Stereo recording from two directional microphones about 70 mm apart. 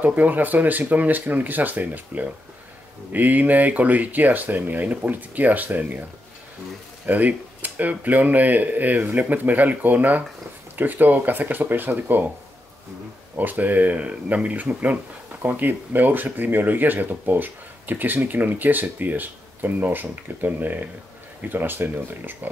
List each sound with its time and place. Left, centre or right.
0.0 s speech: right
7.1 s speech: right
13.4 s speech: right